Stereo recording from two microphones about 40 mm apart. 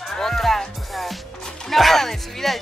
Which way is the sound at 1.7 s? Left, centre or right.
Centre.